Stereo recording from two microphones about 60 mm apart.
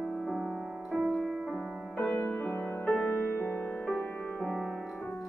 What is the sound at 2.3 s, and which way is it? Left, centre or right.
Music, left.